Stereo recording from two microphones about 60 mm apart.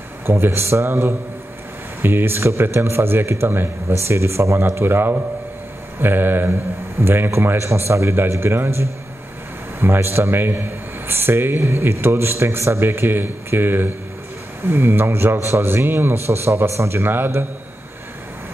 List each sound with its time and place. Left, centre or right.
0.3 s speech: right
2.0 s speech: right
3.9 s speech: right
16.3 s speech: right
17.0 s speech: right